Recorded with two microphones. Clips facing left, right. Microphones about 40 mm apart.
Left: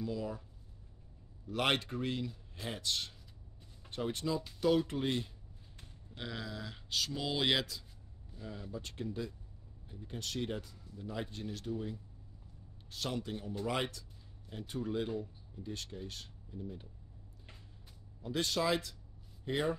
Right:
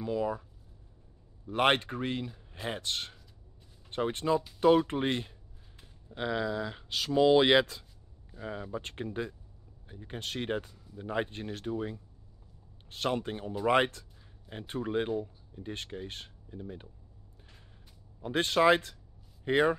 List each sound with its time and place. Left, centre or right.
0.0 s speech: right
1.5 s speech: right
18.2 s speech: right